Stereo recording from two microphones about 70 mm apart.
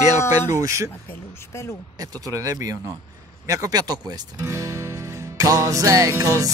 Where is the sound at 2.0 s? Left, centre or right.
Right.